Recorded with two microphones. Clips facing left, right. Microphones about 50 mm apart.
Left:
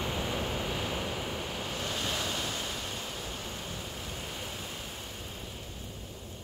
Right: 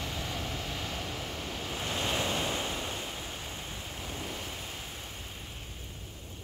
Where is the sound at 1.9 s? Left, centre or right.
Right.